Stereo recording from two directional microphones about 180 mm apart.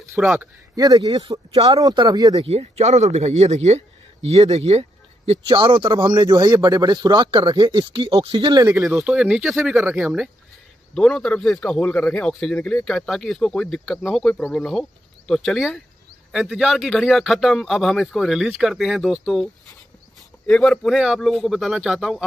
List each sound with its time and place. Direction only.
0.2 s a man's voice: centre (ahead or behind)
0.7 s speech: 20° right (ahead or behind)
2.3 s speech: 35° right (ahead or behind)
8.7 s a man's voice: 5° right (ahead or behind)
11.0 s a man's voice: 5° left (ahead or behind)